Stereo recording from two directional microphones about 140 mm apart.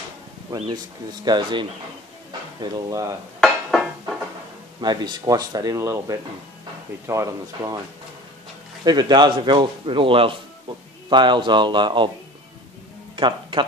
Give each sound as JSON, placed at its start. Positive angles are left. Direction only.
{"t": 0.7, "sound": "a man's voice", "side_deg": -30}
{"t": 3.3, "sound": "dishes", "side_deg": 5}
{"t": 4.7, "sound": "speech", "side_deg": -30}
{"t": 8.8, "sound": "a man's voice", "side_deg": -30}
{"t": 13.1, "sound": "speech", "side_deg": -35}